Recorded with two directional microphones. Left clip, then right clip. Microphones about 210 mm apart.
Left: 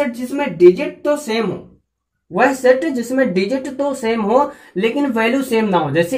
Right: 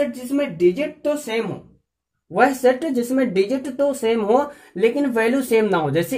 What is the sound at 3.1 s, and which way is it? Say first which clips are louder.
Speech: left 3 dB; 35° right (ahead or behind).